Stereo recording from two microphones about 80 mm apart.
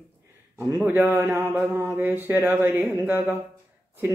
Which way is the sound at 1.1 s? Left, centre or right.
Right.